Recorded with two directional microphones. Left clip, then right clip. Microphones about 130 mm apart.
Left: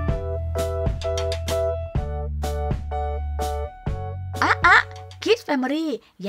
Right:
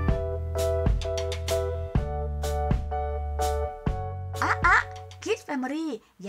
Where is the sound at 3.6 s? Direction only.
10° right (ahead or behind).